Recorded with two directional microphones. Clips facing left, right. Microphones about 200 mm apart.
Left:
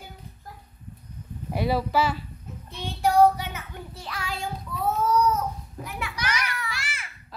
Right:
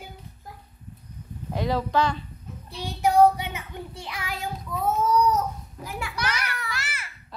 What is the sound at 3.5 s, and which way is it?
Speech, 20° right (ahead or behind).